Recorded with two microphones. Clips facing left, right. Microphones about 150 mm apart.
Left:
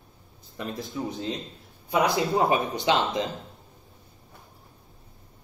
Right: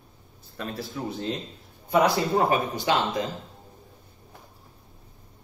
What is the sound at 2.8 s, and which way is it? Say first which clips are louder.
Speech: left 1 dB; 20° left (ahead or behind).